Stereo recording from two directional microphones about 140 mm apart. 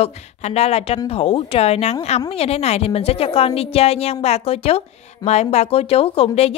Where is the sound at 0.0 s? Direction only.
50° left (ahead or behind).